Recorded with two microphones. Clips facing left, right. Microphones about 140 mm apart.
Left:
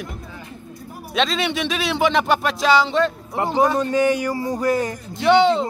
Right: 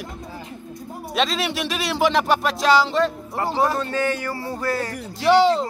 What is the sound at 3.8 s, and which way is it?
Speech, 15° left (ahead or behind).